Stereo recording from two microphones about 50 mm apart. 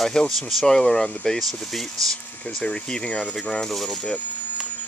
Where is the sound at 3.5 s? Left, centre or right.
Centre.